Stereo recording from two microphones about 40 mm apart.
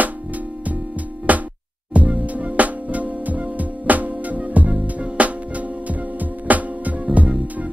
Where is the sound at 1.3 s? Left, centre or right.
Right.